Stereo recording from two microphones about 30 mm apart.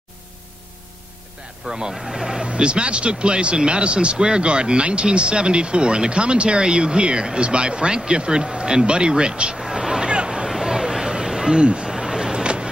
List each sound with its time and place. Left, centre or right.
1.7 s speech: right
2.4 s speech: right
9.6 s vehicle: centre
10.0 s waves: right
10.6 s chatter: centre
11.6 s speech: right
11.9 s a sound: centre
12.3 s vehicle: right